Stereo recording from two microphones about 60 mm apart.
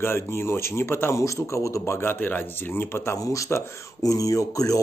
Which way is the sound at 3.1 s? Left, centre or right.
Left.